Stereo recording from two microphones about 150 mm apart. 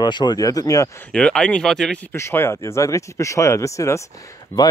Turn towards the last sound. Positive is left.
turn(degrees=25)  # may be behind; listen again after turning